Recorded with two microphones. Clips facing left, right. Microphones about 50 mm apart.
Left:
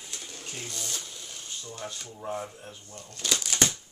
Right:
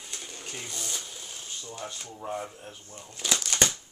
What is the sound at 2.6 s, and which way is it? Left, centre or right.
Speech, right.